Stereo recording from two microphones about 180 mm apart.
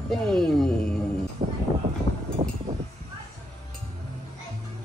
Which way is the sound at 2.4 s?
25° right (ahead or behind).